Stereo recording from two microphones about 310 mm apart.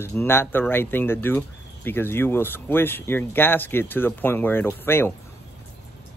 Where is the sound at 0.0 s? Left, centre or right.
Centre.